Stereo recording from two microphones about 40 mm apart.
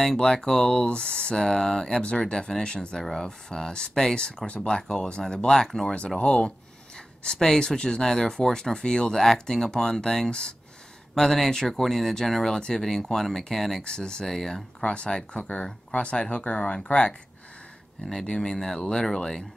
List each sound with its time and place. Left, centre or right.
0.2 s speech: centre
3.0 s speech: centre
6.0 s speech: left
7.3 s speech: centre
9.2 s speech: centre
12.5 s speech: centre
12.8 s speech: centre
13.8 s speech: left
14.2 s speech: centre
14.8 s speech: left
18.2 s speech: centre